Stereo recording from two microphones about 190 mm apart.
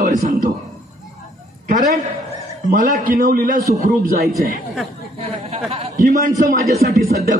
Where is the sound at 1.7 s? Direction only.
45° right (ahead or behind).